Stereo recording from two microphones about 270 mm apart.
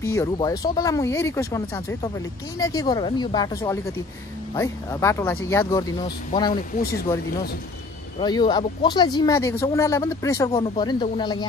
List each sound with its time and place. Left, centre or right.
0.0 s speech: centre
8.2 s speech: centre